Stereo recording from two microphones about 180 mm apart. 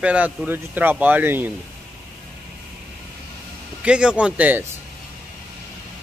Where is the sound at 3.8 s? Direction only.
5° right (ahead or behind).